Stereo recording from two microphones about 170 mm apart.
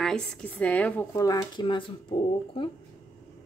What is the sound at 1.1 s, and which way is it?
A woman's voice, 20° left (ahead or behind).